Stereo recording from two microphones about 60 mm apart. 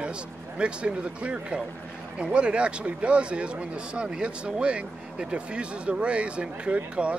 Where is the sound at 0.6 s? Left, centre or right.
Centre.